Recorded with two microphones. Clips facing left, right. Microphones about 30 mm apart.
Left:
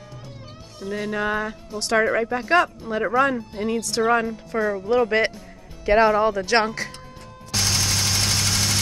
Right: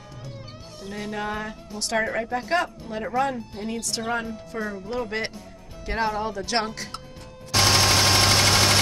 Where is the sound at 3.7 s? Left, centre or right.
Centre.